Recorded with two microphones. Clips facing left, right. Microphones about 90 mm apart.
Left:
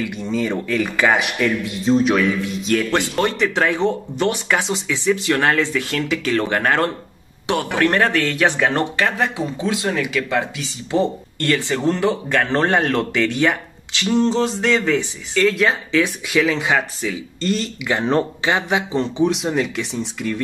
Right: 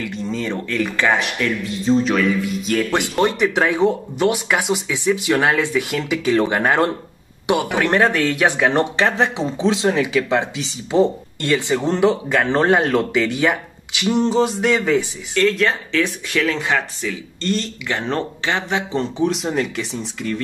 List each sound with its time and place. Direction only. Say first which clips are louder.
0.1 s speech: left 2 dB; 10° left (ahead or behind)
3.0 s speech: right 2 dB; 15° right (ahead or behind)
15.3 s speech: even; 5° left (ahead or behind)